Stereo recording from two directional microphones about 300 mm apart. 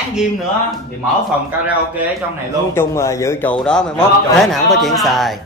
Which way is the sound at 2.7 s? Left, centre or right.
Centre.